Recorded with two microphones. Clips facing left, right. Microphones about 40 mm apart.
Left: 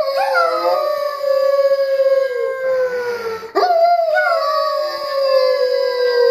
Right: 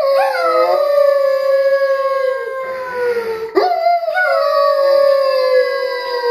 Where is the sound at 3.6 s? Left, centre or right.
Centre.